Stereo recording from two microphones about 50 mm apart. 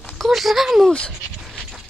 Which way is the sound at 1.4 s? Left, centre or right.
Centre.